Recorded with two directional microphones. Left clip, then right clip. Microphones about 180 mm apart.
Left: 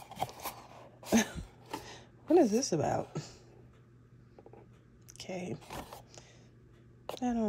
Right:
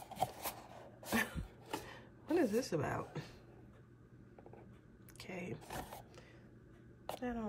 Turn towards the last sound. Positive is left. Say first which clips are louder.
# left 8 dB
turn(degrees=30)  # may be behind; listen again after turning